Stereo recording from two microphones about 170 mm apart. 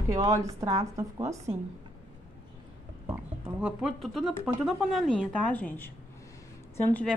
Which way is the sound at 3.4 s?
5° right (ahead or behind).